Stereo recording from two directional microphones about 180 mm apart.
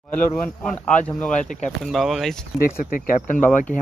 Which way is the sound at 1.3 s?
45° left (ahead or behind).